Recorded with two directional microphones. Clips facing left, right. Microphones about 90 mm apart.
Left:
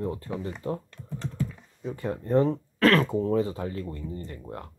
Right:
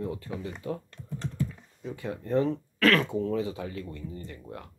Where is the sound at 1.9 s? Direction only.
40° left (ahead or behind).